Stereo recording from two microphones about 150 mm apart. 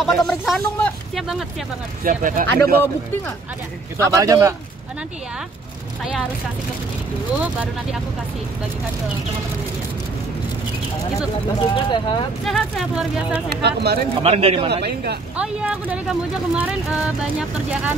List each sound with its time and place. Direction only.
0.0 s speech: centre (ahead or behind)
2.0 s speech: 60° right (ahead or behind)
4.1 s speech: 20° right (ahead or behind)
11.7 s speech: 35° left (ahead or behind)
12.4 s speech: centre (ahead or behind)
13.6 s speech: 90° right
14.2 s a man's voice: 40° right (ahead or behind)
14.7 s speech: 90° right
15.3 s speech: 5° right (ahead or behind)